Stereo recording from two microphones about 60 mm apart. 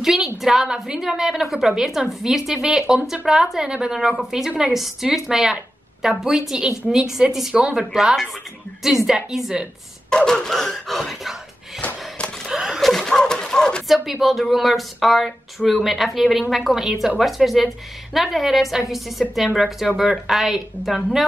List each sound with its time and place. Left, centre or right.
0.0 s a woman's voice: centre
4.5 s a woman's voice: centre
4.7 s a woman's voice: centre
10.0 s speech: centre
12.4 s a sound: centre
12.9 s a sound: centre
13.8 s speech: centre